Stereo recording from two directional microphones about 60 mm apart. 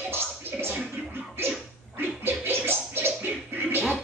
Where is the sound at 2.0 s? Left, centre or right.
Right.